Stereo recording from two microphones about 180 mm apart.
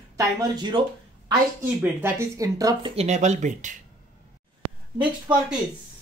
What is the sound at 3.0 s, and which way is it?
Speech, 40° right (ahead or behind).